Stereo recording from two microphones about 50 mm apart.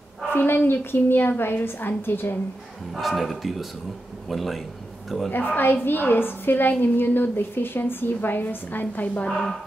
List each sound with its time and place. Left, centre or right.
0.3 s a woman's voice: left
3.0 s speech: centre
5.6 s a woman's voice: left
9.3 s speech: centre